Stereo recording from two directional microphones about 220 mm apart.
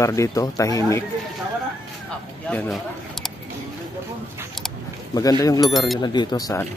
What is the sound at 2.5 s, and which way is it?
Speech, 5° left (ahead or behind).